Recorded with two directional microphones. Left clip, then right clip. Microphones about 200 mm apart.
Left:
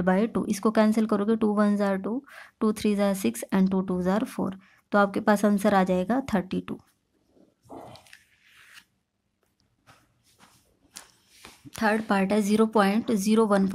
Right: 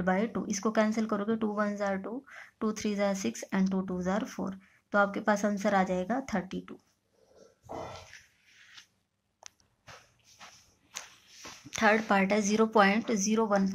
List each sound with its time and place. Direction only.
0.0 s speech: 35° left (ahead or behind)
11.7 s speech: 25° left (ahead or behind); by 13.7 s 40° left (ahead or behind)